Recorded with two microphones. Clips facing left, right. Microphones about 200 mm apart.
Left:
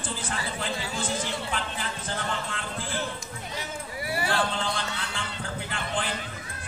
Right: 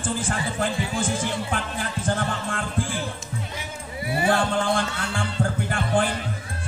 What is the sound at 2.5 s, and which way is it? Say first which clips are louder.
Speech: right 8 dB; 50° right (ahead or behind).